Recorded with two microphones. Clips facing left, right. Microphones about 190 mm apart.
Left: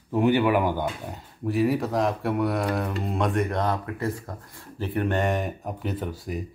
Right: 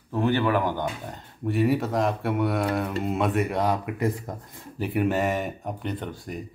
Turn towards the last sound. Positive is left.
turn(degrees=0)  # may be behind; listen again after turning